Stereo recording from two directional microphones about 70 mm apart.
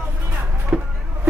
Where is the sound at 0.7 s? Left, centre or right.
Centre.